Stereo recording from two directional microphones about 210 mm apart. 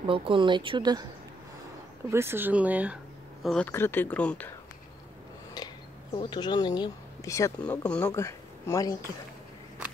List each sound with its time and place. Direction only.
0.0 s speech: 25° right (ahead or behind)
2.0 s speech: 10° right (ahead or behind)
3.4 s speech: 5° left (ahead or behind)
6.1 s speech: 20° left (ahead or behind)